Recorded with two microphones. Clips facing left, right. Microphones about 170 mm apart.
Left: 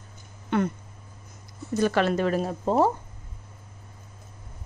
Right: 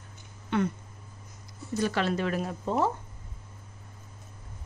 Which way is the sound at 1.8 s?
55° left (ahead or behind).